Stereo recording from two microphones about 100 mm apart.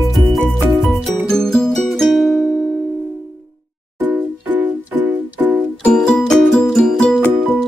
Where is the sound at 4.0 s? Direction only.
20° right (ahead or behind).